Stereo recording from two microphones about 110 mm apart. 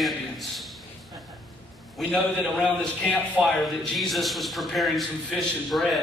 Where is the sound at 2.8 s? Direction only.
10° left (ahead or behind).